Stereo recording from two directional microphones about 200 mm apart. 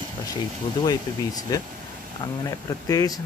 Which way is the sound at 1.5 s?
20° left (ahead or behind).